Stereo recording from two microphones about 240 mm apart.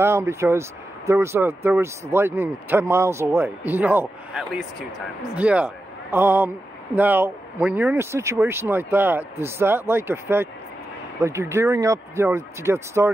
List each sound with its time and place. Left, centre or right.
0.0 s speech: centre